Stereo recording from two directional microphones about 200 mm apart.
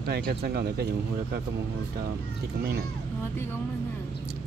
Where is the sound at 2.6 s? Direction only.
50° right (ahead or behind).